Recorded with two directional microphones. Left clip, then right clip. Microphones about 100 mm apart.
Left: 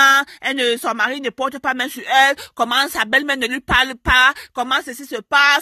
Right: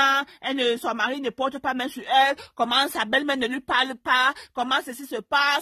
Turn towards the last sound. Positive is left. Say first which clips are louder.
# left 8 dB
turn(degrees=25)  # may be behind; listen again after turning